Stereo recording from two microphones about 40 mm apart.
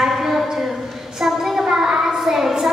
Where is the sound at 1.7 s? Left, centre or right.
Centre.